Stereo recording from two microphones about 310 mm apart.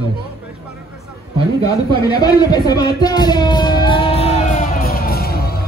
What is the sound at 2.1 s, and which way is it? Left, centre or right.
Music, centre.